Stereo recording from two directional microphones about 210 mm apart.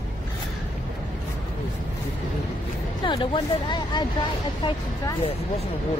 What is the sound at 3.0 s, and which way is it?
Speech, 25° left (ahead or behind).